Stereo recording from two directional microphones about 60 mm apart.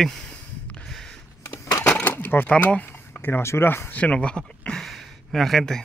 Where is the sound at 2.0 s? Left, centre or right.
Left.